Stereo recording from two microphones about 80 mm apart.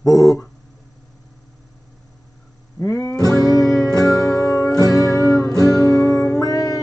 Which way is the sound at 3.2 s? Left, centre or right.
Left.